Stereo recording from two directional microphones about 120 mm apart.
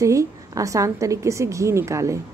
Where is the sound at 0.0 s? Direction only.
25° right (ahead or behind).